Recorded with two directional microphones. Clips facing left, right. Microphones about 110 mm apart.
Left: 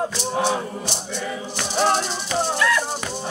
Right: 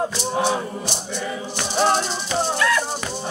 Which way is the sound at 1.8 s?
5° left (ahead or behind).